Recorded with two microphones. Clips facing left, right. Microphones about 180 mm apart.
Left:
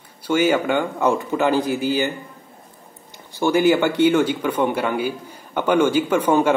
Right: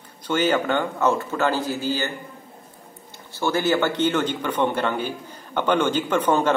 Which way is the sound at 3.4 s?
15° left (ahead or behind).